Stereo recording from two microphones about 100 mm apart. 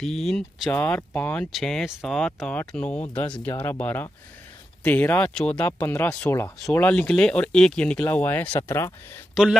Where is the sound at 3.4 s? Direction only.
25° left (ahead or behind).